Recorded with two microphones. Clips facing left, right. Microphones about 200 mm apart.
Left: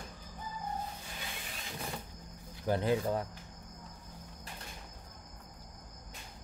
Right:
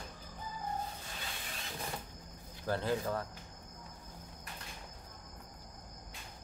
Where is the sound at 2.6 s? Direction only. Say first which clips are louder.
Left 4 dB; 15° left (ahead or behind).